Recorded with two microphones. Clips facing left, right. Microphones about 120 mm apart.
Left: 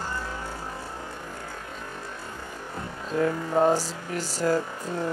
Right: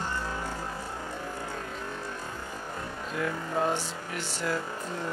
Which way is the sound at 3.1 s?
35° left (ahead or behind).